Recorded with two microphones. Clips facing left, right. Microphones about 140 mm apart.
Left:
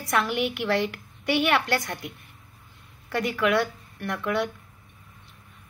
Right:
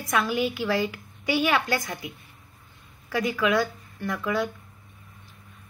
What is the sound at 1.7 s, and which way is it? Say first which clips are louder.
Speech: left 1 dB; 10° right (ahead or behind).